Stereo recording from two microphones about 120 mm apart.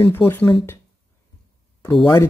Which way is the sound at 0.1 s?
20° left (ahead or behind).